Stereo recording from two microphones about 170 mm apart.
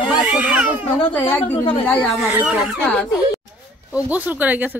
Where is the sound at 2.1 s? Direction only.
5° right (ahead or behind).